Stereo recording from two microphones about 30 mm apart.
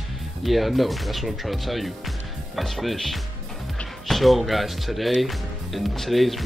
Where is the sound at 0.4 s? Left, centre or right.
Centre.